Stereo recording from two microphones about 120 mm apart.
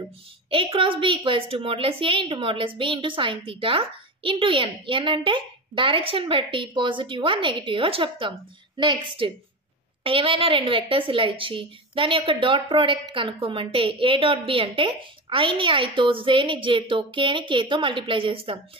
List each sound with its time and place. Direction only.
0.5 s a woman's voice: 45° right (ahead or behind)